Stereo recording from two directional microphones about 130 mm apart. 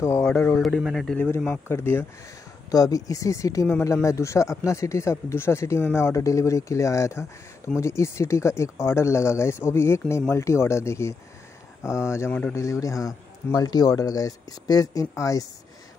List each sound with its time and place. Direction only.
0.2 s speech: 10° left (ahead or behind)
0.6 s a man's voice: centre (ahead or behind)
1.1 s speech: 10° left (ahead or behind)